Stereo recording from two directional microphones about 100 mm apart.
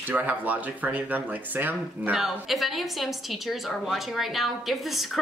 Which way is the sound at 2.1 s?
Centre (ahead or behind).